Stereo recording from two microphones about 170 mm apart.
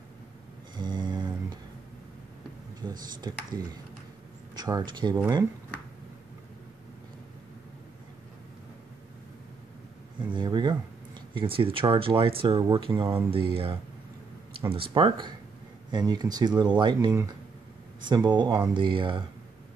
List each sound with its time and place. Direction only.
0.7 s mantra: 25° right (ahead or behind)
2.9 s speech: 25° right (ahead or behind)
10.3 s speech: 25° right (ahead or behind)